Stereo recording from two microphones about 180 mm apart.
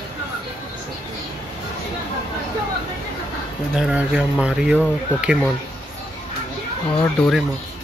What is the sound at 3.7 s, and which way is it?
Speech, 5° right (ahead or behind).